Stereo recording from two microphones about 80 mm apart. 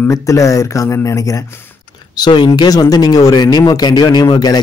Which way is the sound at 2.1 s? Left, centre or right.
Left.